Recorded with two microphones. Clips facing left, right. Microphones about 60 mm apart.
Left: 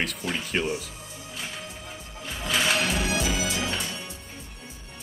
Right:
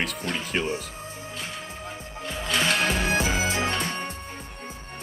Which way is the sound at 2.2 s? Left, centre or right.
Centre.